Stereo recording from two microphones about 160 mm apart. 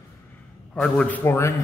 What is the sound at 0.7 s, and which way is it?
Speech, 5° left (ahead or behind).